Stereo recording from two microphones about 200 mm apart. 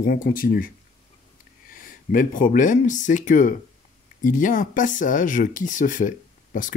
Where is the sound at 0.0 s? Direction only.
45° left (ahead or behind).